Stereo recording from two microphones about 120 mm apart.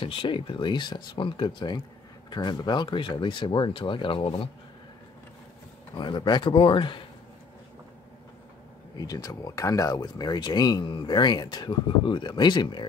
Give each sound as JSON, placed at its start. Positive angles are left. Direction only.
{"t": 0.0, "sound": "speech", "side_deg": 45}
{"t": 5.9, "sound": "speech", "side_deg": 40}
{"t": 8.9, "sound": "speech", "side_deg": 30}